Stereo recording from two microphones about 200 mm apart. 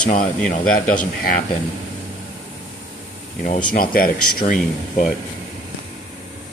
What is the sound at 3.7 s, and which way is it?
Speech, 45° left (ahead or behind).